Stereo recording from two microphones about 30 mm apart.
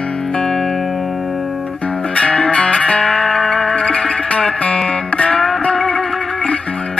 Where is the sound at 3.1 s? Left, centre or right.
Centre.